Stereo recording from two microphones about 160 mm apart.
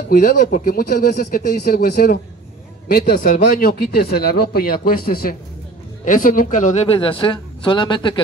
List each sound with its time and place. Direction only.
0.1 s speech: 60° left (ahead or behind); by 8.2 s 30° left (ahead or behind)